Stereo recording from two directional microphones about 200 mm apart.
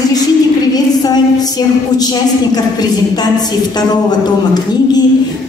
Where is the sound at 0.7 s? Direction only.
20° left (ahead or behind).